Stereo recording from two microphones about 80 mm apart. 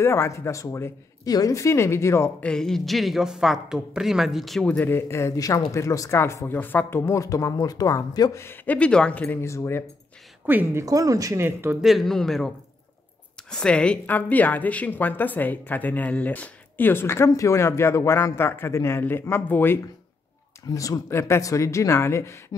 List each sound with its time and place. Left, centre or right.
0.0 s a man's voice: left
1.2 s a man's voice: left
2.4 s speech: centre
4.6 s a man's voice: left
7.1 s speech: left
8.6 s speech: centre
9.4 s a man's voice: left
10.4 s a woman's voice: right
10.9 s speech: right
11.4 s a woman's voice: right
11.8 s speech: centre
14.0 s a woman's voice: left
17.3 s a man's voice: left
20.6 s a man's voice: left